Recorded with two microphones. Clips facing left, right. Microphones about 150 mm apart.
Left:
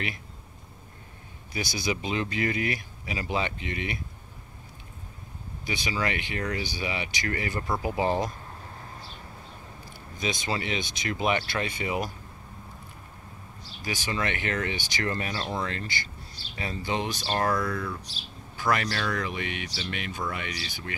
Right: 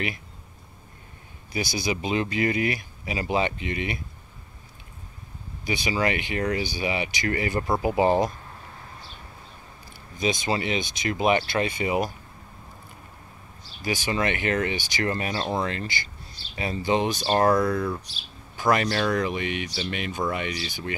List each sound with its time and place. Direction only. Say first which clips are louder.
1.5 s speech: right 3 dB; 10° right (ahead or behind)
5.7 s speech: right 5 dB; 15° right (ahead or behind)
10.2 s speech: right 5 dB; 15° right (ahead or behind)
13.8 s speech: right 5 dB; 15° right (ahead or behind)
15.4 s speech: right 7 dB; 30° right (ahead or behind)
15.7 s speech: right 3 dB; 15° right (ahead or behind)
17.4 s speech: right 6 dB; 30° right (ahead or behind)